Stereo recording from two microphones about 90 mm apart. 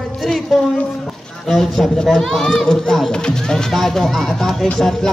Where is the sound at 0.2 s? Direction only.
Centre (ahead or behind).